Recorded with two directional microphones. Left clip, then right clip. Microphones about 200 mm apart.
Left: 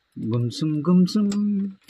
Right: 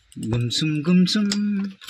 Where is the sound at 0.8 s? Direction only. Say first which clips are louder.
Even; 45° right (ahead or behind).